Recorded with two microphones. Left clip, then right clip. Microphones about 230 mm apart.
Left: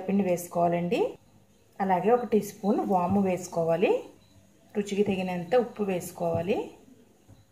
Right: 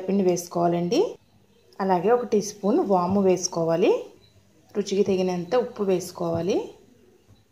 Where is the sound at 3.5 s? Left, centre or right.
Right.